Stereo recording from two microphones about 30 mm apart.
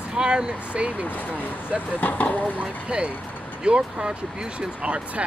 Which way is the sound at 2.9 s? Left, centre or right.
Right.